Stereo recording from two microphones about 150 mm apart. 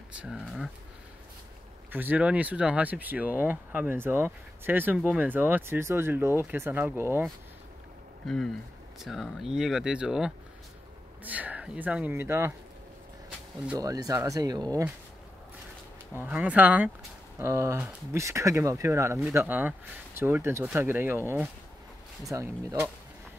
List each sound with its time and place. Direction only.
0.2 s speech: 5° right (ahead or behind)
1.9 s speech: 10° right (ahead or behind)
8.3 s speech: 5° left (ahead or behind); by 12.5 s 15° right (ahead or behind)
13.7 s speech: 25° right (ahead or behind)
16.3 s speech: 10° right (ahead or behind)
22.2 s speech: 20° right (ahead or behind)